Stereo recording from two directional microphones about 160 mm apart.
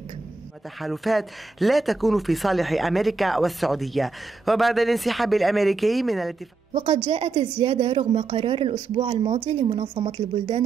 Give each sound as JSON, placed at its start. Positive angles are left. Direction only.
{"t": 0.7, "sound": "speech", "side_deg": 0}
{"t": 6.7, "sound": "a woman's voice", "side_deg": -40}